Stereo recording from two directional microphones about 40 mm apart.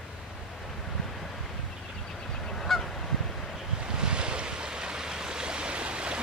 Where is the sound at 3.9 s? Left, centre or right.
Right.